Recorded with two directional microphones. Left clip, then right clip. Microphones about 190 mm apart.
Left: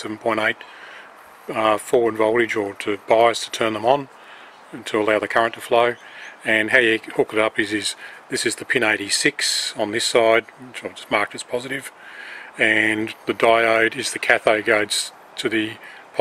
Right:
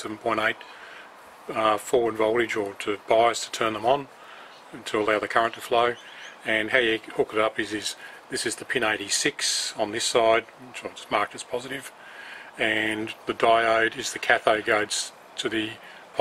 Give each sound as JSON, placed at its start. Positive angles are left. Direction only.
{"t": 0.0, "sound": "speech", "side_deg": 15}